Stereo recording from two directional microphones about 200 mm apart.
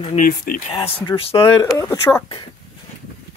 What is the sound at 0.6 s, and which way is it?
Speech, 30° left (ahead or behind).